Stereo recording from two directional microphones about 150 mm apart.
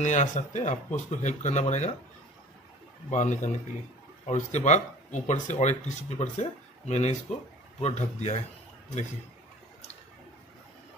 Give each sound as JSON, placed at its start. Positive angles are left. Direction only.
{"t": 0.0, "sound": "speech", "side_deg": 55}
{"t": 3.1, "sound": "speech", "side_deg": 55}